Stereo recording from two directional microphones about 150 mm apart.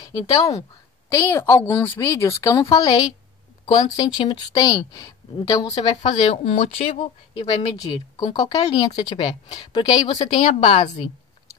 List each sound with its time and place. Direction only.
0.3 s a woman's voice: 20° left (ahead or behind)
5.8 s speech: 40° left (ahead or behind)
7.7 s a woman's voice: 25° left (ahead or behind)
10.1 s speech: 45° left (ahead or behind)